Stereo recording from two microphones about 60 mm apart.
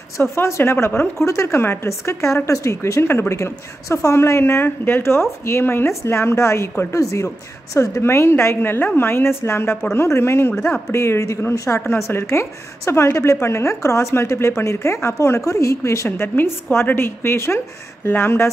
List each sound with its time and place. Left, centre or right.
0.2 s a woman's voice: left
1.9 s a woman's voice: left
8.0 s a woman's voice: left
12.1 s a woman's voice: left
16.1 s a woman's voice: left